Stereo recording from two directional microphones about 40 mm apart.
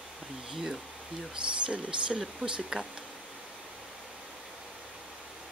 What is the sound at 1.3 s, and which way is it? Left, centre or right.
Speech, right.